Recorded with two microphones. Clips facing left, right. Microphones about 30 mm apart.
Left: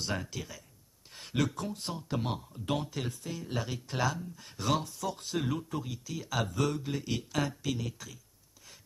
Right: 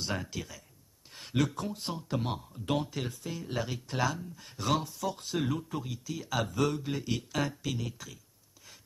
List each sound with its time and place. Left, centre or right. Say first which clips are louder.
0.0 s speech: even; centre